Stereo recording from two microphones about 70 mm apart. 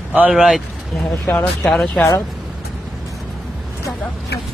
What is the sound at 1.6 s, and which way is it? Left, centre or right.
Speech, centre.